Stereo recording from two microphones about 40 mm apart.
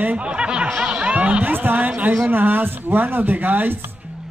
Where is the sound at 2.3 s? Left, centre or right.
Right.